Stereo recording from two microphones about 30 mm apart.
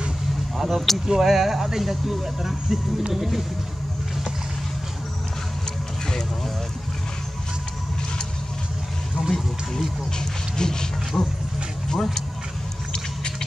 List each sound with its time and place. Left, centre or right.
0.6 s speech: centre
10.1 s speech: left
11.1 s roaring cats: left
11.9 s speech: centre